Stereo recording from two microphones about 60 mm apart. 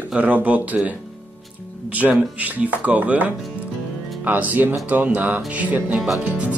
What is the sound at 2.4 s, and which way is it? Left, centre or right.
Speech, right.